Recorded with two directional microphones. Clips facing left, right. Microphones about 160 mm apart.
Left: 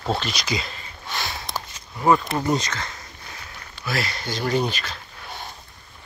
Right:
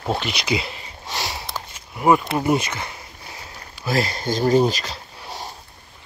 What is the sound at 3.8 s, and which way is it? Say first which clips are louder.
Speech: right 6 dB; 40° right (ahead or behind).